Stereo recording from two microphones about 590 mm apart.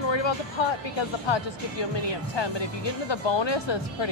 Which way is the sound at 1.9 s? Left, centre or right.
Left.